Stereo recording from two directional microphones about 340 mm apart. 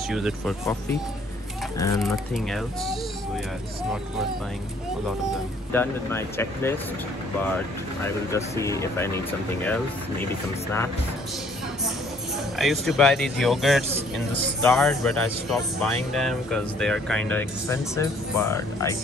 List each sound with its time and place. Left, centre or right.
0.1 s speech: centre
1.8 s speech: centre
5.7 s speech: centre
8.3 s speech: centre
12.5 s speech: centre